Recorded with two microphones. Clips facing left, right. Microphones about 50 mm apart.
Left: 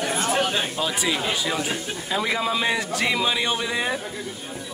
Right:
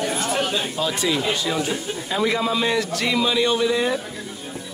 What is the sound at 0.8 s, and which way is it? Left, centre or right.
Speech, centre.